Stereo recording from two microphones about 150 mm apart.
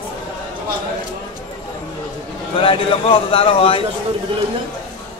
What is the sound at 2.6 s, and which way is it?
Speech, 35° left (ahead or behind).